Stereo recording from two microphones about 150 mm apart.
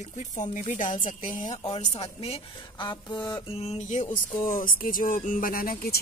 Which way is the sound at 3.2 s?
35° left (ahead or behind).